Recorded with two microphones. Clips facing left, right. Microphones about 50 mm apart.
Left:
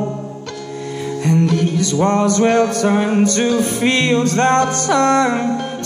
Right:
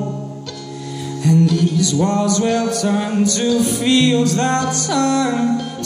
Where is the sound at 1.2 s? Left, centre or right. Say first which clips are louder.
Right 1 dB; left.